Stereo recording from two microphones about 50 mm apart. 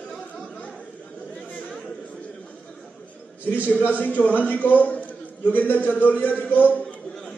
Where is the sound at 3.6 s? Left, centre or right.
Left.